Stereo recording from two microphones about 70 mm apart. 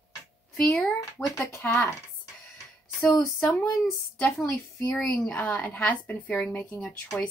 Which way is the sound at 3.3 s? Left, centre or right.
Left.